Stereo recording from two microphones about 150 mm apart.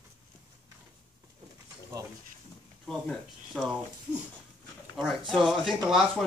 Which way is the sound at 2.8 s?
5° left (ahead or behind).